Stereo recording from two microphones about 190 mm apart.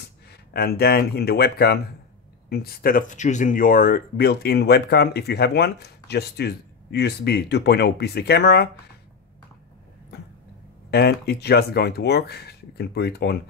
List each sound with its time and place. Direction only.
0.0 s speech: 55° left (ahead or behind)
10.9 s speech: 55° left (ahead or behind)